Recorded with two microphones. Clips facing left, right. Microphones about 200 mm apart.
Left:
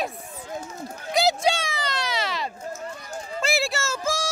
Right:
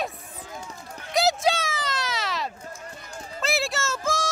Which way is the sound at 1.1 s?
Centre (ahead or behind).